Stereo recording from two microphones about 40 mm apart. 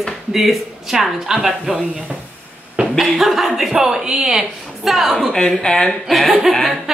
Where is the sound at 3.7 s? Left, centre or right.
Centre.